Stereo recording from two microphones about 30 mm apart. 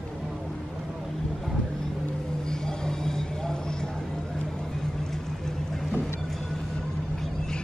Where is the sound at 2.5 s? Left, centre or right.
Left.